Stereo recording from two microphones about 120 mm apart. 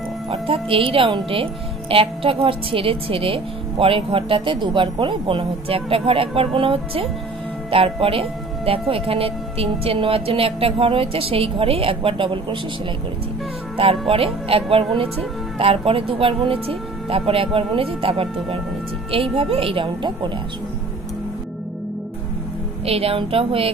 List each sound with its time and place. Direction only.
0.3 s speech: 50° right (ahead or behind)
13.7 s speech: 50° right (ahead or behind)
22.8 s speech: 55° right (ahead or behind)